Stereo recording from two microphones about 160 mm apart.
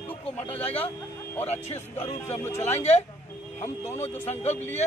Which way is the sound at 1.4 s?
40° left (ahead or behind).